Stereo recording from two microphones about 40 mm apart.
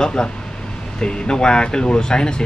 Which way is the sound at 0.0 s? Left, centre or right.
Centre.